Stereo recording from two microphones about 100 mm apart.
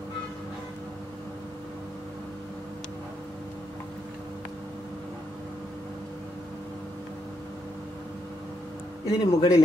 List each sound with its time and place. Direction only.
9.0 s speech: 40° left (ahead or behind)